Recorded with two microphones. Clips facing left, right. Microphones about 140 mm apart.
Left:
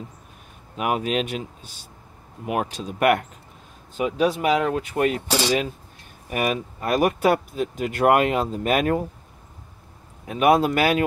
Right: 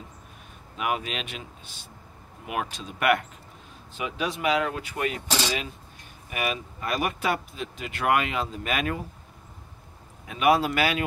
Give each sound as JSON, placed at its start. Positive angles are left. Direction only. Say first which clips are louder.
{"t": 0.7, "sound": "speech", "louder": "left 6 dB", "side_deg": 40}
{"t": 6.3, "sound": "speech", "louder": "left 6 dB", "side_deg": 45}
{"t": 10.2, "sound": "speech", "louder": "left 4 dB", "side_deg": 40}